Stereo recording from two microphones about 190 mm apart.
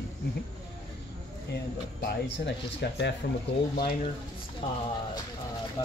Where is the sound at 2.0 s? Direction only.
65° left (ahead or behind).